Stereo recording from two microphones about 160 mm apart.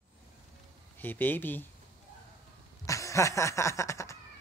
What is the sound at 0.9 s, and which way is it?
Speech, 10° left (ahead or behind).